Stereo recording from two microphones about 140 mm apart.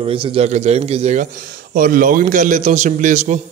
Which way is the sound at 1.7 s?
75° right (ahead or behind).